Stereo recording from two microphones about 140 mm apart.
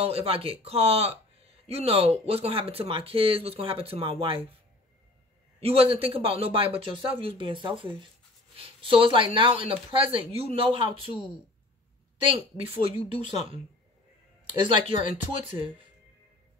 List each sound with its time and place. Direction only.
0.0 s speech: 45° right (ahead or behind)
5.6 s speech: 45° right (ahead or behind)
12.3 s speech: 40° right (ahead or behind)
14.4 s speech: 35° right (ahead or behind)